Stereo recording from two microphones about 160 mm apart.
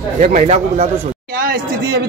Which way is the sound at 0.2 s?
45° right (ahead or behind).